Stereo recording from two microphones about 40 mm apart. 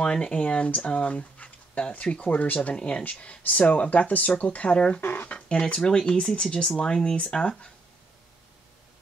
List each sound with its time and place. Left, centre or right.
0.0 s speech: left
2.3 s speech: left
4.7 s speech: left
5.0 s speech: left
5.5 s speech: left